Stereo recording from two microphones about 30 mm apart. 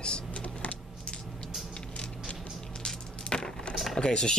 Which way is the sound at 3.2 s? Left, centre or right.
Left.